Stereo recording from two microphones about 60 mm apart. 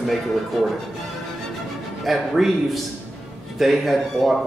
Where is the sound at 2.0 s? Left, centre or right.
Centre.